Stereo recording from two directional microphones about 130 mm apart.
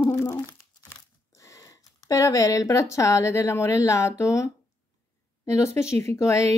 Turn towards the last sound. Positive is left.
turn(degrees=20)  # may be behind; listen again after turning